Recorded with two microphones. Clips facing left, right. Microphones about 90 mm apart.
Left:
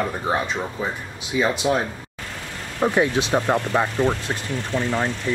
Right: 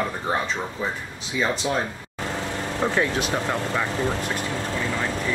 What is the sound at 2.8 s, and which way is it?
Speech, 15° left (ahead or behind).